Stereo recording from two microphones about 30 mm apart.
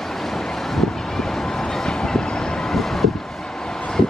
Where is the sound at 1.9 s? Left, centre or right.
Left.